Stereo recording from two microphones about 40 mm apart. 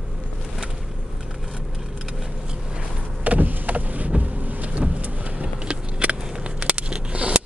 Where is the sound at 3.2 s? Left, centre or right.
Right.